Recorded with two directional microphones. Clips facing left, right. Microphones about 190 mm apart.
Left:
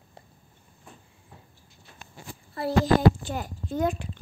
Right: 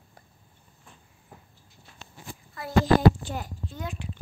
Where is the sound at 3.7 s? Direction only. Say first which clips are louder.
Left 13 dB; 45° left (ahead or behind).